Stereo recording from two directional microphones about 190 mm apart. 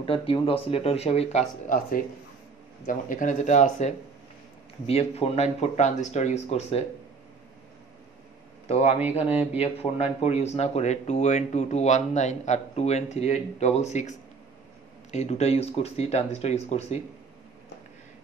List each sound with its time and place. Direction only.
0.0 s speech: 30° left (ahead or behind)
8.6 s a man's voice: 30° left (ahead or behind)